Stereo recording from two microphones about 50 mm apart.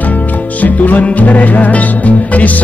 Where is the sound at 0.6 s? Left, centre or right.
Left.